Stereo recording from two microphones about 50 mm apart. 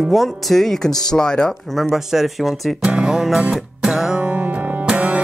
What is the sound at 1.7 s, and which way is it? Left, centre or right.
Speech, centre.